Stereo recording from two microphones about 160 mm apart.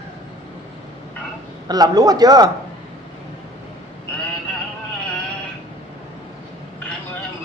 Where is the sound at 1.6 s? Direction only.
25° right (ahead or behind).